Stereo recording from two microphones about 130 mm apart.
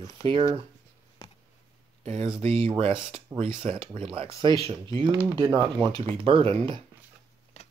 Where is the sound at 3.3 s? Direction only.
25° right (ahead or behind).